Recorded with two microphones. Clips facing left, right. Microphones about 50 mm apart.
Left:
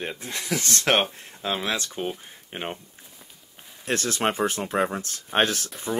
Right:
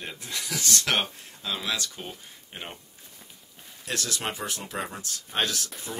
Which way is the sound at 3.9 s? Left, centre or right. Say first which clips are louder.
Left 7 dB; left.